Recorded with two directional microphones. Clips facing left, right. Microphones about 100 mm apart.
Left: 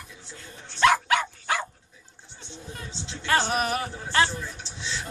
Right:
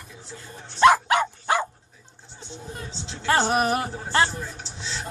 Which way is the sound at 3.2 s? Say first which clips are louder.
Right 3 dB; 30° right (ahead or behind).